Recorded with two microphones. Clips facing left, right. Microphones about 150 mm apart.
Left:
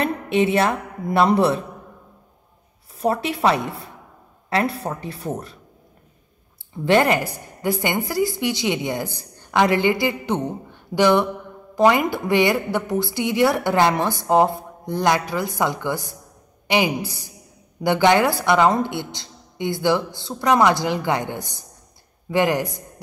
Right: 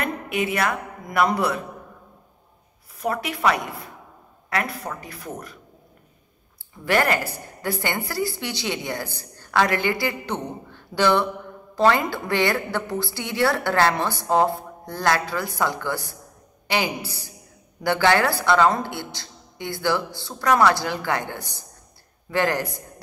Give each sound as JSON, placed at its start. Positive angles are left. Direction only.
{"t": 0.0, "sound": "a woman's voice", "side_deg": 30}
{"t": 3.0, "sound": "a woman's voice", "side_deg": 30}
{"t": 6.8, "sound": "a woman's voice", "side_deg": 20}